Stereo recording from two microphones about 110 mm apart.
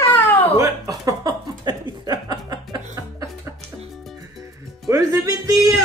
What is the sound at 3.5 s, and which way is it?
Music, 20° right (ahead or behind).